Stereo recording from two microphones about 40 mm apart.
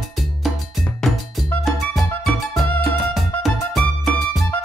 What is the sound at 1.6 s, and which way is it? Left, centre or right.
Music, centre.